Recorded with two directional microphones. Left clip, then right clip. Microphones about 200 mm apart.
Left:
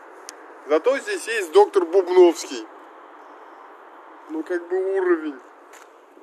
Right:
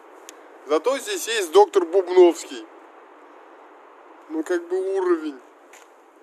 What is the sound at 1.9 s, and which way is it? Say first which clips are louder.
Speech: left 1 dB; centre (ahead or behind).